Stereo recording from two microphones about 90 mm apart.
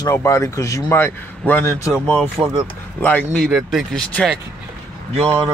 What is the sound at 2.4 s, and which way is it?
Speech, 20° right (ahead or behind).